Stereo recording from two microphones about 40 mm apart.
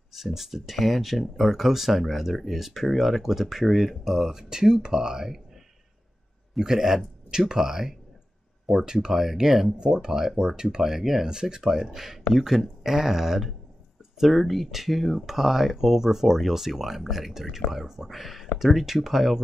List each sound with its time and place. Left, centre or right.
0.1 s speech: centre
2.6 s speech: centre
6.6 s speech: centre
9.8 s speech: right